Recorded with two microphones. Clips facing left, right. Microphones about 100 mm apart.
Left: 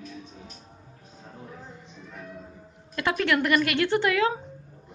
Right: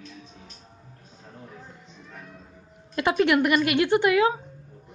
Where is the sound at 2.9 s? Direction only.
20° right (ahead or behind).